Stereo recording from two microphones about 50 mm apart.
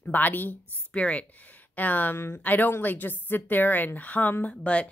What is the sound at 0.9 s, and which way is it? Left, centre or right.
Speech, left.